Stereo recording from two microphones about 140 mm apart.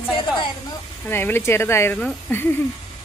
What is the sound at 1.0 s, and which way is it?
Speech, 15° left (ahead or behind).